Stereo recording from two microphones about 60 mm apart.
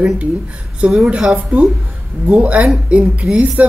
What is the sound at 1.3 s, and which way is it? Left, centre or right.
Speech, right.